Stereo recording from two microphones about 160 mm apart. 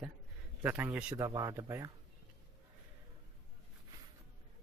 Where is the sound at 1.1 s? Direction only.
20° right (ahead or behind).